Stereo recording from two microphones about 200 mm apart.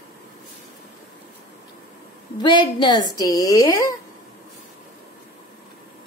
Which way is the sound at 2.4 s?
25° left (ahead or behind).